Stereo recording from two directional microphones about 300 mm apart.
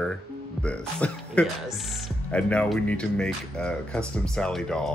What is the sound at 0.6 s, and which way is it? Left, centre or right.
Speech, centre.